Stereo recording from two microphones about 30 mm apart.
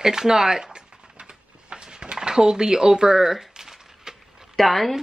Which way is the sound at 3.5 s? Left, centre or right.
Centre.